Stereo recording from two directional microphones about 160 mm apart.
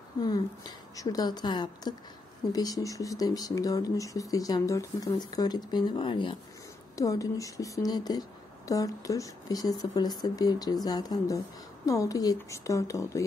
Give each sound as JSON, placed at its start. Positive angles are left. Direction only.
{"t": 0.2, "sound": "a woman's voice", "side_deg": 25}
{"t": 7.0, "sound": "a woman's voice", "side_deg": 20}